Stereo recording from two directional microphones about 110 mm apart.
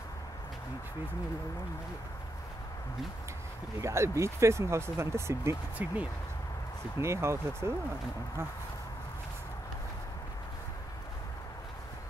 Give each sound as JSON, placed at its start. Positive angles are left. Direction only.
{"t": 3.8, "sound": "speech", "side_deg": -25}
{"t": 7.0, "sound": "speech", "side_deg": -25}